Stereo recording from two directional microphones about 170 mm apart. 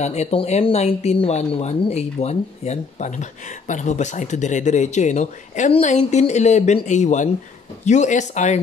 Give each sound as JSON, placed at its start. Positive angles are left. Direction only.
{"t": 0.0, "sound": "speech", "side_deg": 40}